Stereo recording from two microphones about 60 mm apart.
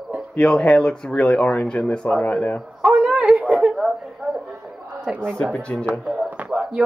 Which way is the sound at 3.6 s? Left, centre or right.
Centre.